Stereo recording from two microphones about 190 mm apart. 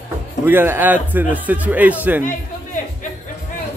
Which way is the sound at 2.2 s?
45° left (ahead or behind).